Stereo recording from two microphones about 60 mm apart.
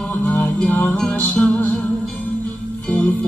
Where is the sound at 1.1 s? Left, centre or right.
Left.